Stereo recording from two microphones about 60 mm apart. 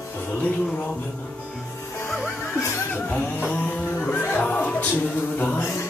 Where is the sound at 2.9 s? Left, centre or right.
Left.